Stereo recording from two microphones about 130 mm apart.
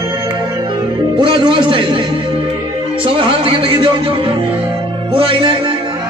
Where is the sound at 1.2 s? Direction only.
40° right (ahead or behind).